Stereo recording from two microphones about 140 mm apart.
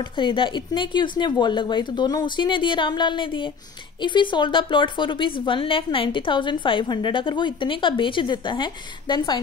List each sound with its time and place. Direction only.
0.2 s a woman's voice: 35° left (ahead or behind)